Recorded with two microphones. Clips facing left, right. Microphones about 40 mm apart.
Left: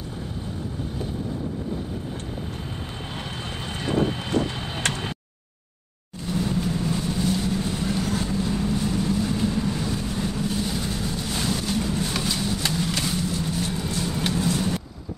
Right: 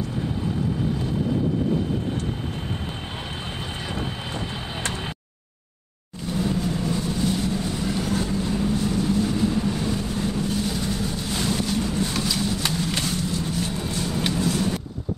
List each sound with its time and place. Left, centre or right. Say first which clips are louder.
3.8 s vehicle: left 9 dB; centre
6.3 s vehicle: right 1 dB; centre
12.4 s a sound: right 2 dB; centre
13.0 s vehicle: even; centre